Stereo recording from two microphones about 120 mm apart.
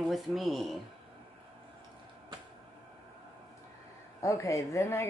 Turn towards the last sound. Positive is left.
turn(degrees=20)  # may be behind; listen again after turning